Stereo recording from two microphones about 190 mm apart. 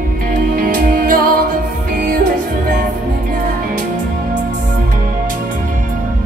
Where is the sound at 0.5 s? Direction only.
50° right (ahead or behind).